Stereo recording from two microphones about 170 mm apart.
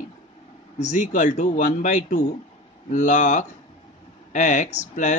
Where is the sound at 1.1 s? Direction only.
50° left (ahead or behind).